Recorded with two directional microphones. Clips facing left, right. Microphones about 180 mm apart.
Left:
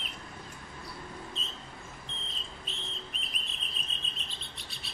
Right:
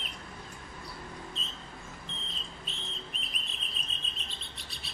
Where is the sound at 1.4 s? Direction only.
Centre (ahead or behind).